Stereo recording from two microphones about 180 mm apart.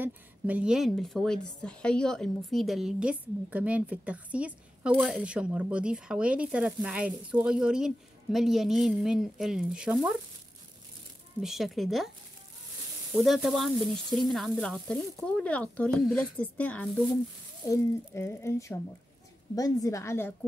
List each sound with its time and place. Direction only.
0.0 s a woman's voice: 5° right (ahead or behind)
11.4 s a woman's voice: centre (ahead or behind)
13.1 s a woman's voice: centre (ahead or behind)